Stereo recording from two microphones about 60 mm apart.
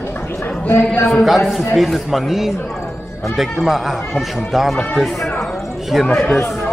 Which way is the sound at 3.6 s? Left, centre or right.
Centre.